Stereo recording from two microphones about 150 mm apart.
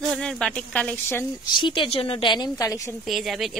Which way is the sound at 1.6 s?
35° left (ahead or behind).